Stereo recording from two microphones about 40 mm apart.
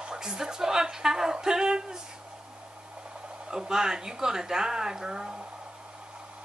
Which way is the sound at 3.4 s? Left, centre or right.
Centre.